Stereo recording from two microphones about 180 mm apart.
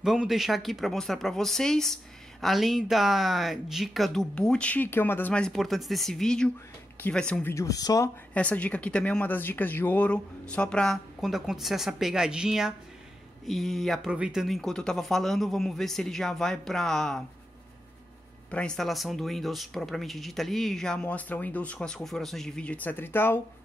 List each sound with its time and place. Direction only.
0.0 s speech: centre (ahead or behind)
7.5 s speech: 20° left (ahead or behind)
8.3 s speech: 5° left (ahead or behind)
18.5 s speech: 5° left (ahead or behind)